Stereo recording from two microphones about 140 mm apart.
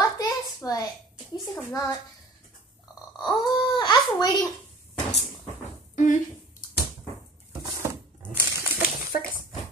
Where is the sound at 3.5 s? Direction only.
35° left (ahead or behind).